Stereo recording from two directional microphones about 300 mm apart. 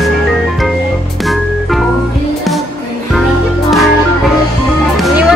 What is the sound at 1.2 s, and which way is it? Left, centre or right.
Organ, centre.